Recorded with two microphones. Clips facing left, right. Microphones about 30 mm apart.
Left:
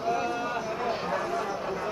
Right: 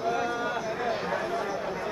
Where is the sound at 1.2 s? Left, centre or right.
Right.